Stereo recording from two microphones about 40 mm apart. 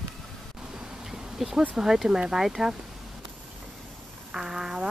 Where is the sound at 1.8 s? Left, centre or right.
Centre.